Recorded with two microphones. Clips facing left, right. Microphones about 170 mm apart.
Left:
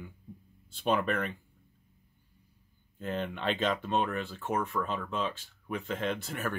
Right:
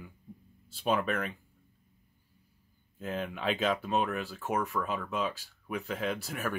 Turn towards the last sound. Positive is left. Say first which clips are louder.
# even
turn(degrees=0)  # may be behind; listen again after turning